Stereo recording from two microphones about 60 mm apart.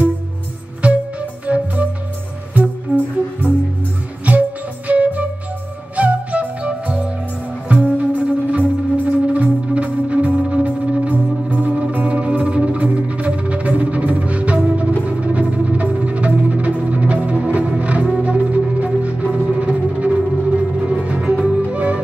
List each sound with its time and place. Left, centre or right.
0.8 s music: right
2.9 s music: right
4.3 s music: right